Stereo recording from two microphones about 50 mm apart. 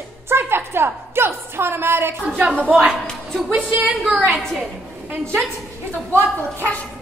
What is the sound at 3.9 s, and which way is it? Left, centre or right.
Speech, centre.